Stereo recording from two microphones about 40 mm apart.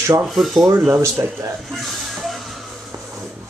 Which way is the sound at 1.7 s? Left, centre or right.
Centre.